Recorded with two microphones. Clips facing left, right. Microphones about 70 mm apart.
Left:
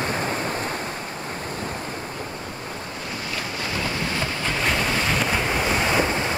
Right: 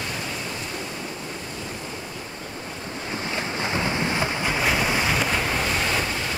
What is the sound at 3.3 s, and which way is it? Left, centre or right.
Waves, right.